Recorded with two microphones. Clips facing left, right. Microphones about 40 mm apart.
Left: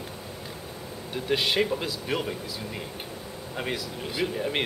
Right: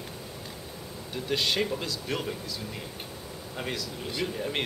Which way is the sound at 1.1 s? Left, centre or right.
Centre.